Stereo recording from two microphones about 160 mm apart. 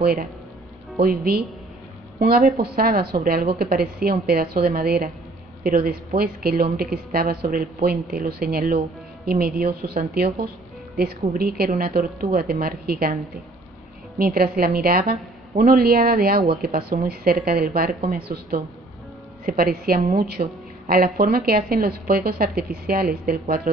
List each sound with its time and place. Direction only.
0.0 s a woman's voice: 70° right (ahead or behind)
14.1 s a woman's voice: 70° right (ahead or behind)